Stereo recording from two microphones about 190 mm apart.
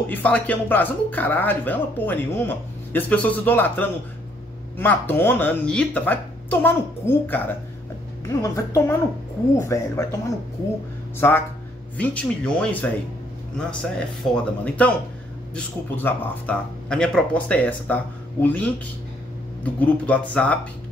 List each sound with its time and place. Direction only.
0.1 s speech: 10° left (ahead or behind)
11.1 s speech: 10° left (ahead or behind)